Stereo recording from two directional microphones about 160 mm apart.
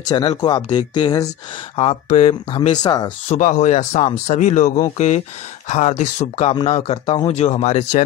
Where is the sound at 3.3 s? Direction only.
50° left (ahead or behind).